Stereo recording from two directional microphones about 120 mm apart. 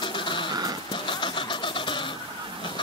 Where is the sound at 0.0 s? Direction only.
45° left (ahead or behind).